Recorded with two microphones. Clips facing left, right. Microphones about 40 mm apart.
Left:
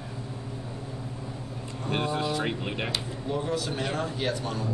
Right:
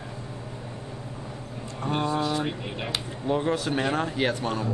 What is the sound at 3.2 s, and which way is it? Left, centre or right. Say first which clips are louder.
Speech: right 5 dB; right.